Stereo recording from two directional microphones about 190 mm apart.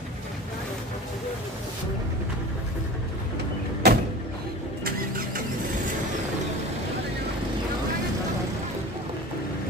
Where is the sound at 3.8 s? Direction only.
55° right (ahead or behind).